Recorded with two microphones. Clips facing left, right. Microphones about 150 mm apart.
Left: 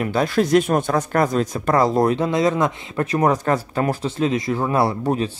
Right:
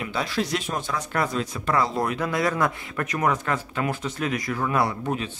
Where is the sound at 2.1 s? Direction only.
25° left (ahead or behind).